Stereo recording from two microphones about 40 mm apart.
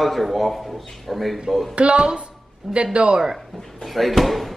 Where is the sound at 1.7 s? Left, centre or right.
Right.